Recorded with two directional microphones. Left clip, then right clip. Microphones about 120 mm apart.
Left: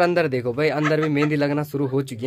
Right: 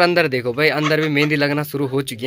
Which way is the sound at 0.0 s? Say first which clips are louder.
Right 4 dB; 5° left (ahead or behind).